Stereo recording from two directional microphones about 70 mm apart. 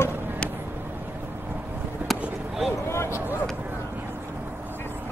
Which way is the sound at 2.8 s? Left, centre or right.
Left.